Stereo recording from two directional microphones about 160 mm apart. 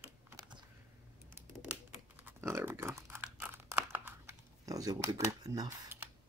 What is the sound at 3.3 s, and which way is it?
Crumpling, 10° right (ahead or behind).